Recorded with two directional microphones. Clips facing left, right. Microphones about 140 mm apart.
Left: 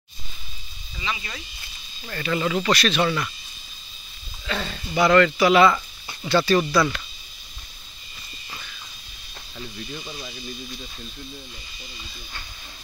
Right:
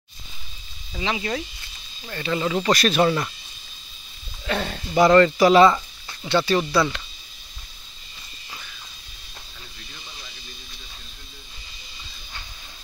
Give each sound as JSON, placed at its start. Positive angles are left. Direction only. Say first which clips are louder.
{"t": 0.9, "sound": "speech", "louder": "right 6 dB", "side_deg": -70}
{"t": 2.0, "sound": "speech", "louder": "even", "side_deg": -20}
{"t": 2.7, "sound": "speech", "louder": "right 4 dB", "side_deg": -40}
{"t": 4.5, "sound": "speech", "louder": "right 3 dB", "side_deg": -50}
{"t": 6.2, "sound": "speech", "louder": "left 1 dB", "side_deg": -20}
{"t": 6.6, "sound": "speech", "louder": "even", "side_deg": -5}